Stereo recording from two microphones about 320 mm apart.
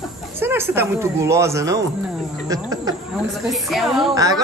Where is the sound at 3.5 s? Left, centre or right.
Centre.